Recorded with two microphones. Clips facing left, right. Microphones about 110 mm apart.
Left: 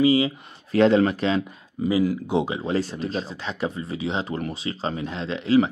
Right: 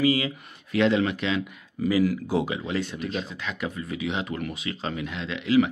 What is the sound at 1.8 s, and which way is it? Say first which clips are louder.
Speech: left 1 dB; 25° left (ahead or behind).